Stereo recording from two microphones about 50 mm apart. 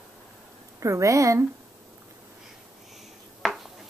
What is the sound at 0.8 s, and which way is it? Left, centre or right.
Speech, right.